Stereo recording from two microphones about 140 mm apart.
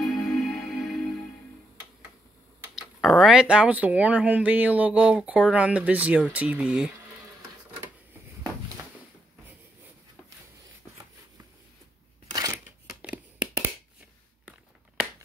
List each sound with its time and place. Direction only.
0.0 s music: centre (ahead or behind)
3.0 s speech: centre (ahead or behind)
12.3 s crushing: 25° right (ahead or behind)
13.0 s a sound: 10° right (ahead or behind)